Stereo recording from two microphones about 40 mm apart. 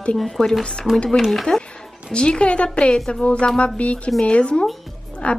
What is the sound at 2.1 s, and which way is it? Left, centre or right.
A woman's voice, left.